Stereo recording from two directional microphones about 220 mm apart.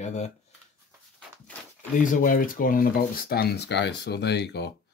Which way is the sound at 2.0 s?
40° left (ahead or behind).